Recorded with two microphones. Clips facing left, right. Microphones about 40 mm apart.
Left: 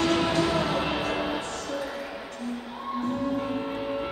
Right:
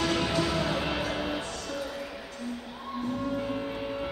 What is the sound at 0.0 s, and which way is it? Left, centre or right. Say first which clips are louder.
Music: left 4 dB; centre.